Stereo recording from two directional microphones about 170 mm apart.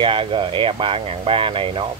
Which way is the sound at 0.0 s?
30° right (ahead or behind).